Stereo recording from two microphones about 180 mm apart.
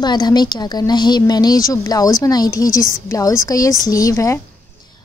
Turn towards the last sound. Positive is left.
turn(degrees=15)  # may be behind; listen again after turning